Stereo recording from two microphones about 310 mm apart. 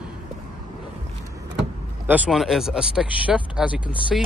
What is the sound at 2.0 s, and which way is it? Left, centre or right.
Speech, centre.